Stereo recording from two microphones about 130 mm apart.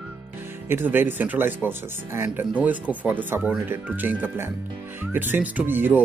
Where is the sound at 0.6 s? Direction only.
15° right (ahead or behind).